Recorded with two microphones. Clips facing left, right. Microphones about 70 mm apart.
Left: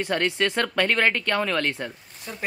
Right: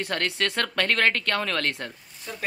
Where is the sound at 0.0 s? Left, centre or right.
Centre.